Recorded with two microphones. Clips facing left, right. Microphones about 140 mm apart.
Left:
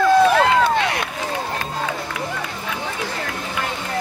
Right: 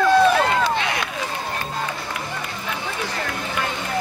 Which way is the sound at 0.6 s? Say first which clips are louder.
Left 3 dB; 50° left (ahead or behind).